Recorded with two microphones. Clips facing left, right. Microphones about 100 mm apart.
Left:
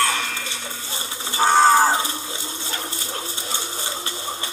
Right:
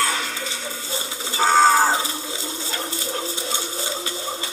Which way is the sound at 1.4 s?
20° left (ahead or behind).